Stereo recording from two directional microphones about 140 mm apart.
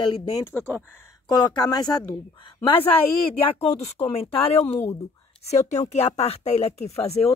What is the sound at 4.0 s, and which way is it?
Speech, 45° left (ahead or behind).